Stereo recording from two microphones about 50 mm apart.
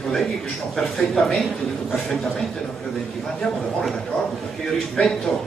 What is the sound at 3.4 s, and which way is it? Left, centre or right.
Speech, left.